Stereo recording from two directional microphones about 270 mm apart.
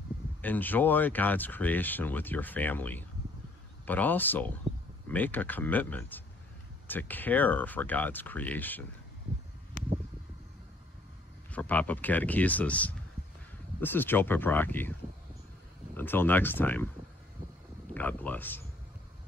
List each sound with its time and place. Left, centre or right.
0.4 s speech: centre
11.5 s speech: centre
17.9 s speech: centre